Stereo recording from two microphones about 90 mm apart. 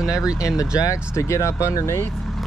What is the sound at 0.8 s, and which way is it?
Speech, 35° left (ahead or behind).